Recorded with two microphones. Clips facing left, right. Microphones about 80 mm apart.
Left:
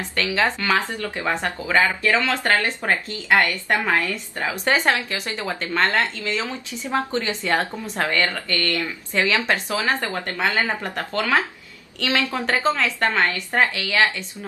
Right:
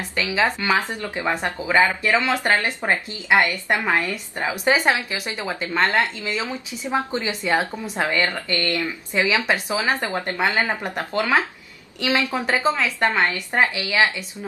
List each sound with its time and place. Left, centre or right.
0.1 s speech: centre